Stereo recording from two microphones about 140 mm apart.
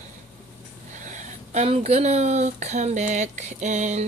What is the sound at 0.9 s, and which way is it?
A woman's voice, 60° right (ahead or behind).